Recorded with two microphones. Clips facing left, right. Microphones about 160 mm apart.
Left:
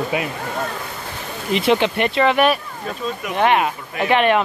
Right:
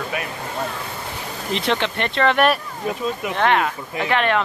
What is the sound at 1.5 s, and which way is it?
Speech, 10° left (ahead or behind).